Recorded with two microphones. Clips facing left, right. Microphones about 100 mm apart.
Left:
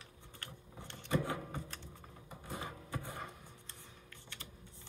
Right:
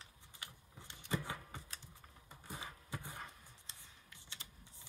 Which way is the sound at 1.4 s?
50° left (ahead or behind).